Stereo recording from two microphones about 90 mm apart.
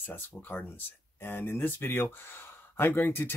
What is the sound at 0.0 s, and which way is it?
Speech, 20° left (ahead or behind).